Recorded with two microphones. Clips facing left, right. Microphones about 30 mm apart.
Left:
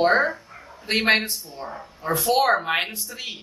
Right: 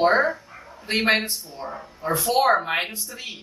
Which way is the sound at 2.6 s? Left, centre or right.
Centre.